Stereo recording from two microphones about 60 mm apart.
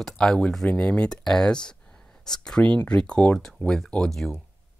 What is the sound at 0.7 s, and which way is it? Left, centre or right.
Speech, left.